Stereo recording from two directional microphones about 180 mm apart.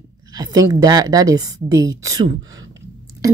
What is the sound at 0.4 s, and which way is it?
Speech, 20° right (ahead or behind).